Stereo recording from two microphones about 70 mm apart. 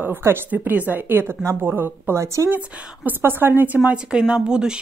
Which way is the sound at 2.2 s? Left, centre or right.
Right.